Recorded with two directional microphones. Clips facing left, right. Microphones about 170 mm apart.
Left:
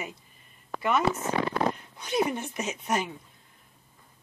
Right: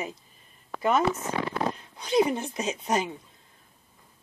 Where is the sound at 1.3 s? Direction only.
60° left (ahead or behind).